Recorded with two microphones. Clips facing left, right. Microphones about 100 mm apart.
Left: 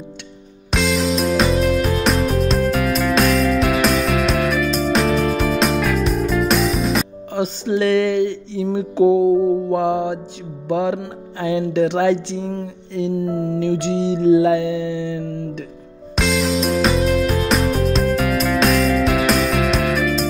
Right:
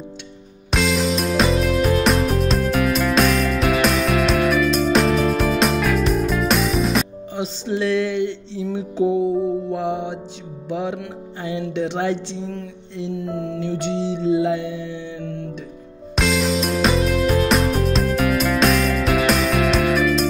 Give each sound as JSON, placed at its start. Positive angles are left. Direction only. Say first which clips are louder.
{"t": 0.7, "sound": "music", "louder": "left 1 dB", "side_deg": 0}
{"t": 7.3, "sound": "music", "louder": "left 4 dB", "side_deg": 65}
{"t": 8.7, "sound": "music", "louder": "left 5 dB", "side_deg": 80}
{"t": 10.7, "sound": "music", "louder": "left 6 dB", "side_deg": 90}
{"t": 11.4, "sound": "music", "louder": "left 6 dB", "side_deg": 80}
{"t": 13.2, "sound": "speech", "louder": "left 5 dB", "side_deg": 35}
{"t": 13.6, "sound": "music", "louder": "left 4 dB", "side_deg": 65}
{"t": 16.2, "sound": "music", "louder": "left 1 dB", "side_deg": 0}